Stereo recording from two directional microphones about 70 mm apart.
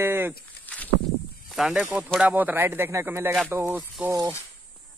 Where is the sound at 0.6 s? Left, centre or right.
Left.